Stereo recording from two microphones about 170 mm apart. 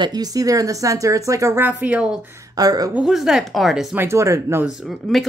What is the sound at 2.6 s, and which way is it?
Speech, 20° right (ahead or behind).